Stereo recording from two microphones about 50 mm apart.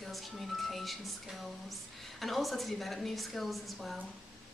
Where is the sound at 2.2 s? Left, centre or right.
Centre.